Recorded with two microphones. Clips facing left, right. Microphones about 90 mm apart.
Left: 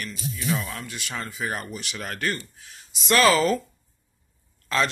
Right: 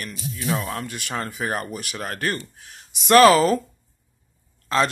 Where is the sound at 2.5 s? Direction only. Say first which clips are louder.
Right 2 dB; 55° right (ahead or behind); by 3.6 s 40° right (ahead or behind).